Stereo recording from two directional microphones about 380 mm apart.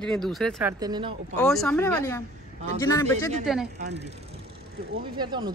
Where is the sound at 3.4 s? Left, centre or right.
Centre.